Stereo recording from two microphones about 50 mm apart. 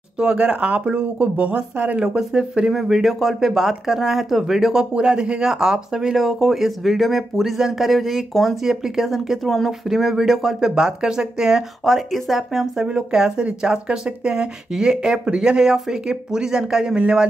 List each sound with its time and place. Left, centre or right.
0.4 s speech: right
2.0 s speech: centre
12.8 s speech: centre